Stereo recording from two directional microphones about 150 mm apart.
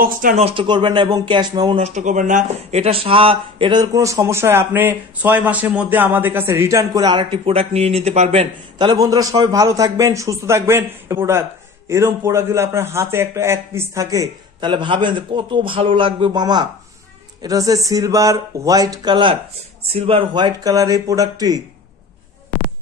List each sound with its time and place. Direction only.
0.0 s speech: 65° right (ahead or behind)
0.4 s speech: 40° right (ahead or behind)
1.8 s speech: 50° right (ahead or behind)
8.7 s a woman's voice: 25° right (ahead or behind)